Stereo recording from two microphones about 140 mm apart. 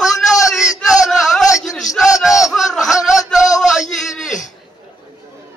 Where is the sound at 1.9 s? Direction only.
60° left (ahead or behind).